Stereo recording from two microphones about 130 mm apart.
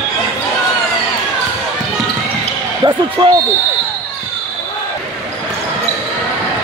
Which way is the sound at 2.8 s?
30° right (ahead or behind).